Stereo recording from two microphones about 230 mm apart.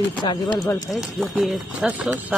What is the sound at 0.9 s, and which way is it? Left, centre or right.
Speech, centre.